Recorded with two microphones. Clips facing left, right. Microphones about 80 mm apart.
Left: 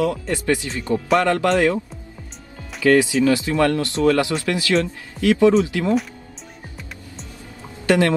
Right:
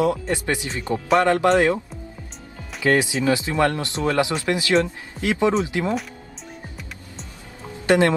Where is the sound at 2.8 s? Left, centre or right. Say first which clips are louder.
Left 4 dB; right.